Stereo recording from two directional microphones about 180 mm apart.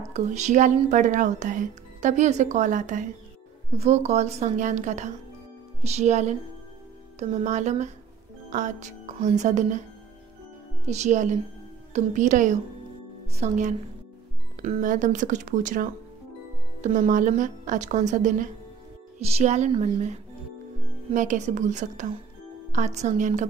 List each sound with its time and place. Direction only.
0.1 s a woman's voice: 40° right (ahead or behind)
10.9 s a woman's voice: 40° right (ahead or behind)